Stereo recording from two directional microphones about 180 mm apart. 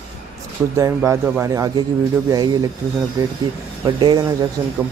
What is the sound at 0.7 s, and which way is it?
Speech, 15° right (ahead or behind).